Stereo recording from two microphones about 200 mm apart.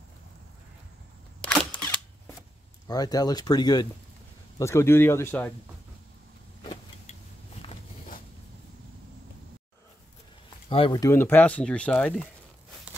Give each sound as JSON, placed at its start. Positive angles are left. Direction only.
{"t": 1.4, "sound": "single-lens reflex camera", "side_deg": 5}
{"t": 2.9, "sound": "speech", "side_deg": 20}
{"t": 6.6, "sound": "vehicle", "side_deg": 30}
{"t": 10.7, "sound": "speech", "side_deg": 25}